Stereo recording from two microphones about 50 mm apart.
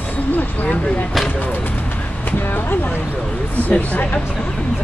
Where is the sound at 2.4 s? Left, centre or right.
Left.